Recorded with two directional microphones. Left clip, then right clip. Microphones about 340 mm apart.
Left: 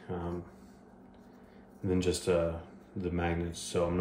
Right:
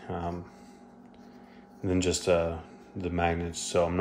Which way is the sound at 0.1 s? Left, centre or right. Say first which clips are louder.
Right 4 dB; centre.